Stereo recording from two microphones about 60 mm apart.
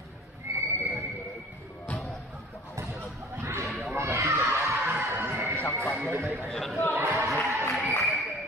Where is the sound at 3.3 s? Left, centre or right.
Right.